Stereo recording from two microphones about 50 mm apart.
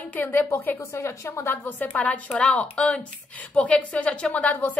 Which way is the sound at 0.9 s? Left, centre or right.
Left.